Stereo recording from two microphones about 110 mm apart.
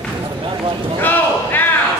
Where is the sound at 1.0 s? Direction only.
15° left (ahead or behind).